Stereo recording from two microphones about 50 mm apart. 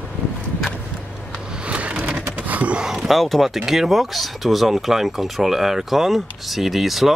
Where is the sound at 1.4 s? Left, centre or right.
Centre.